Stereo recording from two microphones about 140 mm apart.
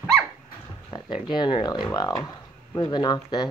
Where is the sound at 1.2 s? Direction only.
35° left (ahead or behind).